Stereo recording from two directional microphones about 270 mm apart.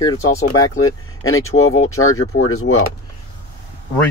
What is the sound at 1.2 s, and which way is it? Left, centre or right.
Speech, left.